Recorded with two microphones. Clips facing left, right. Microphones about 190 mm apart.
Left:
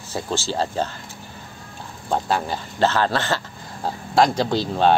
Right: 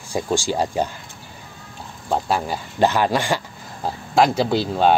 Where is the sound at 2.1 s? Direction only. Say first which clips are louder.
Right 1 dB; 5° right (ahead or behind).